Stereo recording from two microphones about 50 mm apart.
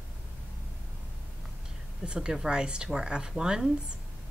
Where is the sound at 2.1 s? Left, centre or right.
Centre.